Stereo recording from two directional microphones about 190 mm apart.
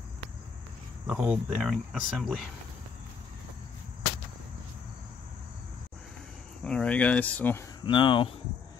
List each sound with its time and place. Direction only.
1.0 s speech: 5° right (ahead or behind)
6.6 s speech: 5° left (ahead or behind)
7.8 s speech: 25° left (ahead or behind)